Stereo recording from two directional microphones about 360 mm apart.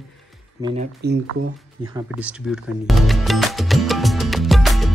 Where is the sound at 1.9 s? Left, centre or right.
Centre.